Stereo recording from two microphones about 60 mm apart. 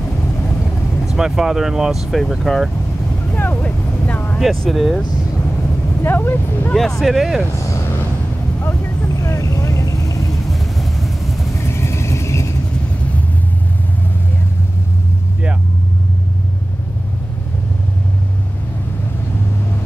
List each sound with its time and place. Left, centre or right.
1.0 s speech: centre
3.3 s vehicle: left
4.4 s speech: centre
6.0 s speech: left
6.7 s speech: centre
8.6 s vehicle: left
9.2 s vehicle: left
10.4 s vehicle: centre
11.5 s vehicle: left